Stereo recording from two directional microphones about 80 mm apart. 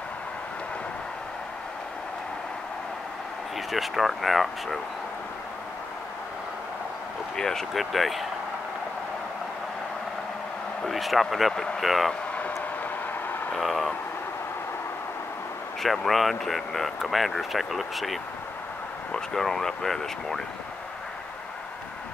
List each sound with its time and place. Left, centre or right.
3.5 s speech: centre
7.3 s speech: centre
10.8 s speech: centre
13.6 s speech: centre
15.8 s speech: centre